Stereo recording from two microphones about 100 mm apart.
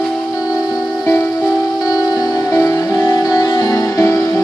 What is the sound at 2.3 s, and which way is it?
Music, 30° left (ahead or behind).